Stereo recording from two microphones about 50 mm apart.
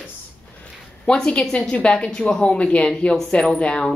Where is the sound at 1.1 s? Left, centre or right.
Centre.